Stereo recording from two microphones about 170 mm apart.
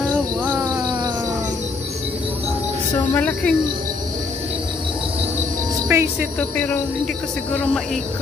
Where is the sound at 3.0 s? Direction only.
10° left (ahead or behind).